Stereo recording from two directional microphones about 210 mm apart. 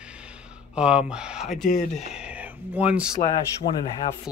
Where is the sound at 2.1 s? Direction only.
5° right (ahead or behind).